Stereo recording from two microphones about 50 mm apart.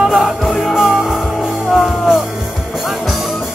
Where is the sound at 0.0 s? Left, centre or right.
Centre.